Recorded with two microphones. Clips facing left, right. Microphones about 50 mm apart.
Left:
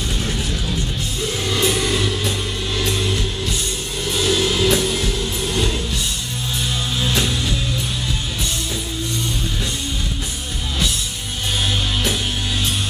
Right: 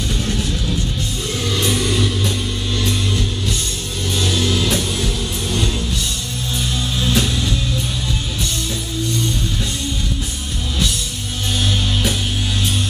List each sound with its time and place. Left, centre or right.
1.6 s music: centre
4.1 s music: centre
7.1 s music: centre